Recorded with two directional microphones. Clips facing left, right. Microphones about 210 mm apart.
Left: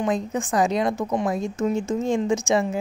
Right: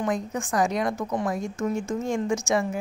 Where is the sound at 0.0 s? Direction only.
20° left (ahead or behind).